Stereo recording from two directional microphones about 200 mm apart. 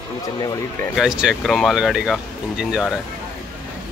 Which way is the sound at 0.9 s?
5° right (ahead or behind).